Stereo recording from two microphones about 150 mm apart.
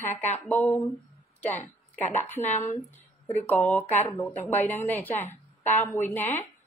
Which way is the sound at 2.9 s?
50° left (ahead or behind).